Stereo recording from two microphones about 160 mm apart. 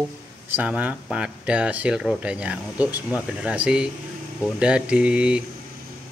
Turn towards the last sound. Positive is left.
turn(degrees=-5)  # may be behind; listen again after turning